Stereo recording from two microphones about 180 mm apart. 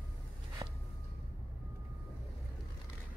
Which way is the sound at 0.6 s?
20° right (ahead or behind).